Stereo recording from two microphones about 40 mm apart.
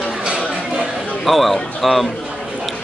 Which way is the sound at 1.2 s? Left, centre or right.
Centre.